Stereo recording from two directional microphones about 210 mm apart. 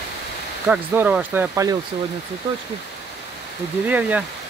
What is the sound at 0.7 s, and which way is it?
Speech, 5° right (ahead or behind).